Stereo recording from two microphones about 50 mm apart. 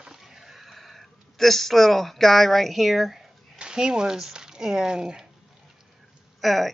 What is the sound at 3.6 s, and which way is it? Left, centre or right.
Speech, centre.